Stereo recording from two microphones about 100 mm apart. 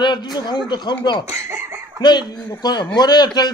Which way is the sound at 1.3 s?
30° right (ahead or behind).